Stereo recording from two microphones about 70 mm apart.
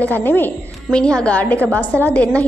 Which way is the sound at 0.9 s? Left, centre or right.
Centre.